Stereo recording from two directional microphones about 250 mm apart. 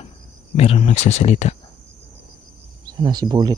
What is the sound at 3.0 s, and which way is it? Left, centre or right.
Speech, centre.